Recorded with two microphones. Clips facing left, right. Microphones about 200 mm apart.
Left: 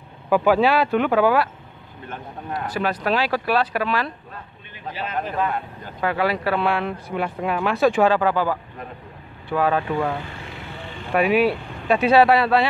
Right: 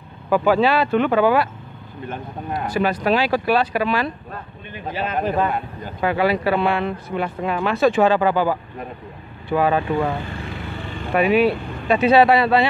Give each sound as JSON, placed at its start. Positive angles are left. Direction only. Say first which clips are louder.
{"t": 0.3, "sound": "speech", "louder": "even", "side_deg": 10}
{"t": 2.0, "sound": "speech", "louder": "right 3 dB", "side_deg": -15}
{"t": 2.7, "sound": "speech", "louder": "right 4 dB", "side_deg": 0}
{"t": 4.9, "sound": "speech", "louder": "right 5 dB", "side_deg": -50}
{"t": 6.0, "sound": "speech", "louder": "right 3 dB", "side_deg": 0}
{"t": 11.1, "sound": "speech", "louder": "right 2 dB", "side_deg": 5}